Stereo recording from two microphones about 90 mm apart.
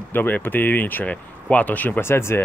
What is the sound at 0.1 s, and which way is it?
Speech, 20° left (ahead or behind).